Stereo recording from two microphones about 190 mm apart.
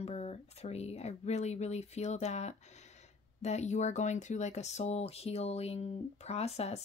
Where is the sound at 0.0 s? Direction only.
35° left (ahead or behind).